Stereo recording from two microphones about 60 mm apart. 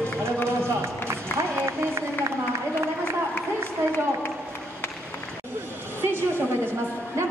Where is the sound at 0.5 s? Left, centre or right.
Right.